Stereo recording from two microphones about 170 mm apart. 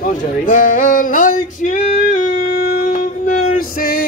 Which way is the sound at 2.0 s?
50° left (ahead or behind).